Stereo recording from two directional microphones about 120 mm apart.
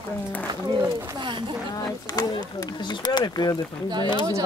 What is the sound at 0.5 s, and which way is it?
Speech, 40° right (ahead or behind).